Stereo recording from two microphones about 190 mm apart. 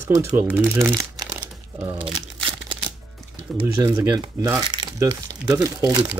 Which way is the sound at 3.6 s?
15° right (ahead or behind).